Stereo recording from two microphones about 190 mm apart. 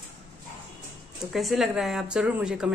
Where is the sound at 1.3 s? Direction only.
Centre (ahead or behind).